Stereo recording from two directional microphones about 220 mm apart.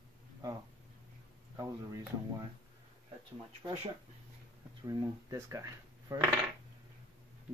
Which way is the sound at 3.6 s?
25° right (ahead or behind).